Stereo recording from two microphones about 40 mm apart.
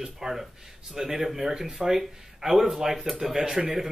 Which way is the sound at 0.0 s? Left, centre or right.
Centre.